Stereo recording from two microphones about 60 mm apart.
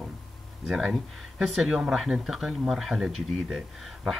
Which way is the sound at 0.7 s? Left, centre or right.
Centre.